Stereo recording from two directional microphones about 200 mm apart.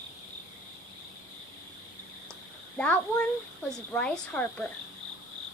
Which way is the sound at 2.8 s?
5° left (ahead or behind).